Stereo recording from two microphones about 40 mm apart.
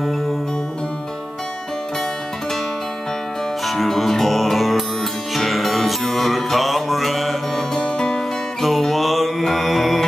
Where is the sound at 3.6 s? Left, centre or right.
Centre.